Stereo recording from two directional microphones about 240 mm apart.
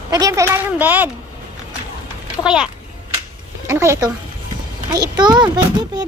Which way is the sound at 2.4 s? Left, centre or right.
Centre.